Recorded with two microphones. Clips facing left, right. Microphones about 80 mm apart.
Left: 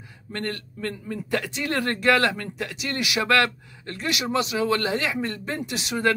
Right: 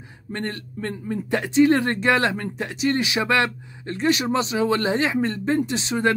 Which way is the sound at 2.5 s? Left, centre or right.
Right.